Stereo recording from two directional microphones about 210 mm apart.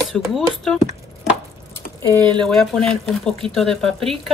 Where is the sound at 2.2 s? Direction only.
20° right (ahead or behind).